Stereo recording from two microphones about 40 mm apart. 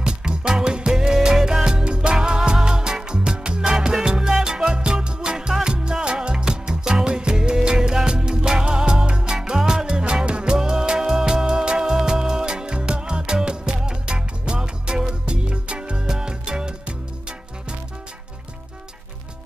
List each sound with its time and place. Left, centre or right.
0.0 s music: centre